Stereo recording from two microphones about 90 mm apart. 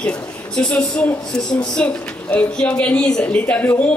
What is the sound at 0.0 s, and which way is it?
A woman's voice, 10° left (ahead or behind).